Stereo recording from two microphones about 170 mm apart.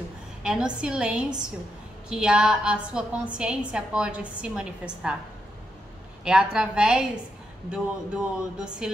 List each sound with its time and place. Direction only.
0.4 s a woman's voice: 5° right (ahead or behind)
6.2 s a woman's voice: 5° right (ahead or behind)